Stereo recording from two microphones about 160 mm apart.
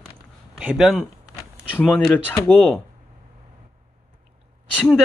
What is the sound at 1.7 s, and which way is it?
Speech, 5° left (ahead or behind).